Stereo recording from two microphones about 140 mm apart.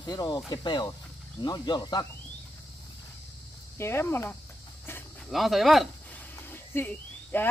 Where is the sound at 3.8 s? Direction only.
20° left (ahead or behind).